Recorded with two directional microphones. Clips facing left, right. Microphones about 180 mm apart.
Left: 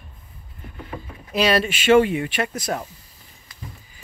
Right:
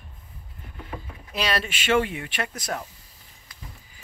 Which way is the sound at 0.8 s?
5° left (ahead or behind).